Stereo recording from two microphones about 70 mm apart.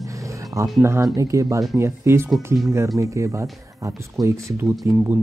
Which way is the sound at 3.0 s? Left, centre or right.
Right.